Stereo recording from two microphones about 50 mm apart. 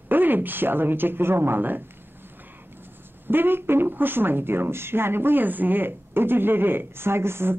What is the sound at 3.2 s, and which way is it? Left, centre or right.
Speech, right.